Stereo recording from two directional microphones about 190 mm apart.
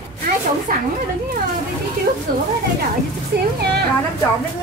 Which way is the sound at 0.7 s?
50° right (ahead or behind).